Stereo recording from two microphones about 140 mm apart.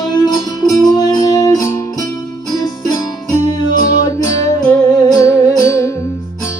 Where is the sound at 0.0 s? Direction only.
30° left (ahead or behind).